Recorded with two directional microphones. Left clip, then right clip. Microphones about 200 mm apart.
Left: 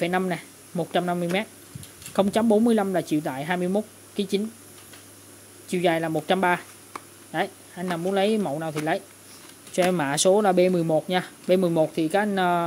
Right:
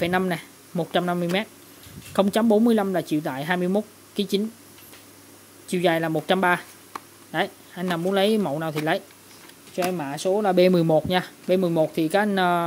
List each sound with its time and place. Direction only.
0.0 s speech: 5° right (ahead or behind)
5.7 s speech: 5° right (ahead or behind)
9.8 s speech: 20° left (ahead or behind)
10.5 s speech: 10° right (ahead or behind)